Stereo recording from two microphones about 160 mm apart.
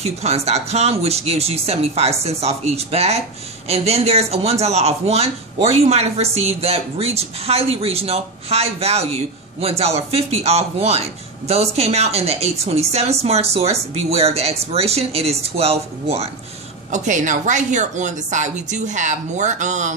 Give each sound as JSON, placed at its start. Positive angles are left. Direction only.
{"t": 0.0, "sound": "speech", "side_deg": -40}
{"t": 16.9, "sound": "a woman's voice", "side_deg": -50}